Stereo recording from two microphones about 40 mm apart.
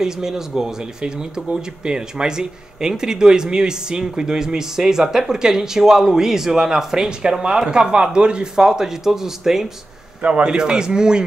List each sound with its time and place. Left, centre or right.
0.0 s speech: centre
8.6 s speech: centre
10.2 s speech: right